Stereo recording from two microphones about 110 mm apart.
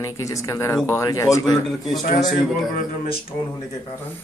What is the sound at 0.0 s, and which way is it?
Speech, 30° left (ahead or behind).